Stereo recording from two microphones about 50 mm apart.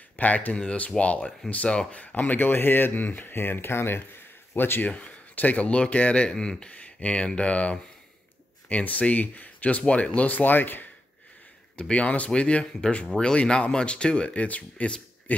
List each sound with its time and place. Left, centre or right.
0.2 s speech: left
2.3 s speech: left
4.8 s speech: left
6.3 s speech: centre
6.7 s speech: left
11.9 s speech: left